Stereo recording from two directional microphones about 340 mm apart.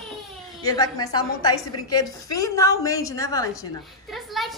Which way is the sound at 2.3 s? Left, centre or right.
Centre.